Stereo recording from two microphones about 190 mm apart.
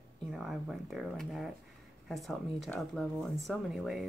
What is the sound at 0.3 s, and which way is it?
A woman's voice, centre (ahead or behind).